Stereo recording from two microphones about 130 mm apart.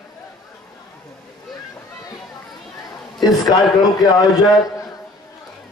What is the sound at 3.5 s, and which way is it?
Speech, 30° left (ahead or behind).